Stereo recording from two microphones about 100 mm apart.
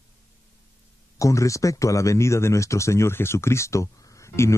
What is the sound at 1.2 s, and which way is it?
Speech, 30° left (ahead or behind).